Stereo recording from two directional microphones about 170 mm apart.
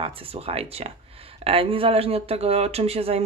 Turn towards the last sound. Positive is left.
turn(degrees=-35)  # may be behind; listen again after turning